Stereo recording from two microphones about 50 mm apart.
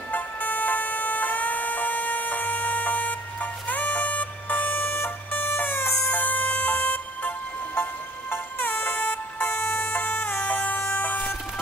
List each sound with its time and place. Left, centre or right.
0.1 s music: left
5.8 s a sound: left
6.1 s music: left